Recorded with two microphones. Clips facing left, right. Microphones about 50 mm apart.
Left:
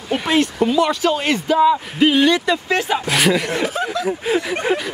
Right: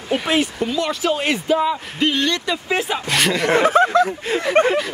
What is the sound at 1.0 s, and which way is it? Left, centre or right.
Speech, centre.